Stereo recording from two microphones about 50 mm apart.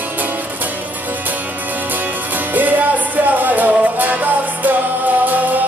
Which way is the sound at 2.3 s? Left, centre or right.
Right.